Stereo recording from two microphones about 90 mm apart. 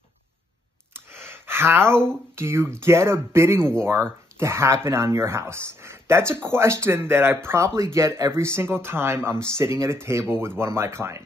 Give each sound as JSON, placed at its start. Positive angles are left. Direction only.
{"t": 1.1, "sound": "gasp", "side_deg": -25}
{"t": 2.3, "sound": "speech", "side_deg": -30}